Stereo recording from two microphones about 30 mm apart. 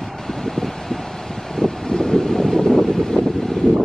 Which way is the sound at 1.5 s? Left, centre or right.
Centre.